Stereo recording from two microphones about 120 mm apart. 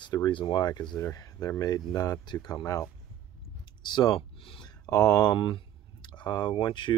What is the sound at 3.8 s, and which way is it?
Speech, 40° left (ahead or behind).